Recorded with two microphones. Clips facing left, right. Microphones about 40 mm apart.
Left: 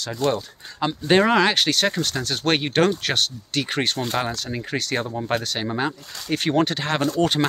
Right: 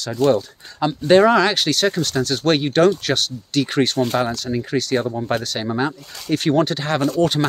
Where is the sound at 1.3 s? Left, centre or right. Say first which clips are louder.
Right 2 dB; left.